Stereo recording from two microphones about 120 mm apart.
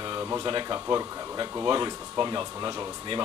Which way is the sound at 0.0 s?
35° right (ahead or behind).